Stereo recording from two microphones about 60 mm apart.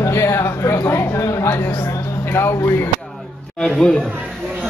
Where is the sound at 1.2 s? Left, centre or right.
Left.